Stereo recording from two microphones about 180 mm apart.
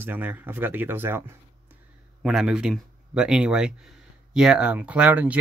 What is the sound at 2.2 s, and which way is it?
Speech, centre (ahead or behind).